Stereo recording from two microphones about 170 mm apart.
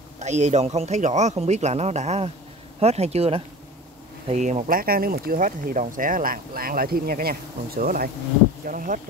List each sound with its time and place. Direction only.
0.2 s speech: 40° right (ahead or behind)